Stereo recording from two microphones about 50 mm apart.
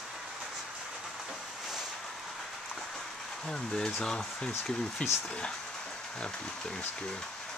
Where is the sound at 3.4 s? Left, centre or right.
Centre.